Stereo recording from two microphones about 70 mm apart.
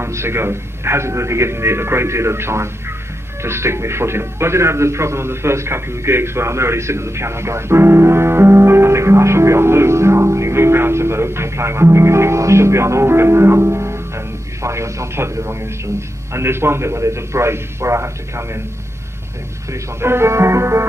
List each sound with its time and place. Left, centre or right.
0.0 s a man's voice: right
19.7 s a man's voice: right